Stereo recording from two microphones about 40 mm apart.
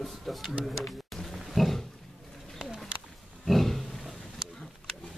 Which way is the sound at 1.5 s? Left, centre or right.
Centre.